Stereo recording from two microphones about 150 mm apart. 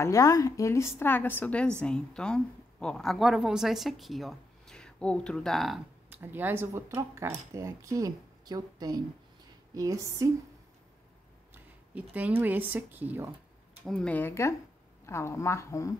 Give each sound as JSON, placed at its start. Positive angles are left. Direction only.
{"t": 0.0, "sound": "a woman's voice", "side_deg": 20}
{"t": 6.2, "sound": "speech", "side_deg": -15}
{"t": 11.5, "sound": "speech", "side_deg": -10}
{"t": 13.8, "sound": "a woman's voice", "side_deg": 5}